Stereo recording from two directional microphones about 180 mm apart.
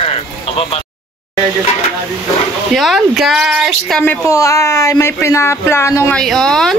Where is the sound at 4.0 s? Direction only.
15° left (ahead or behind).